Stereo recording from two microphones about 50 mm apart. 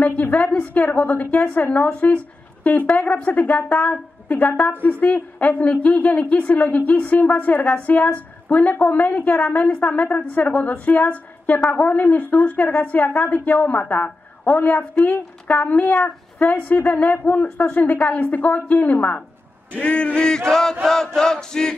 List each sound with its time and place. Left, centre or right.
0.0 s a woman's voice: left
20.2 s chant: centre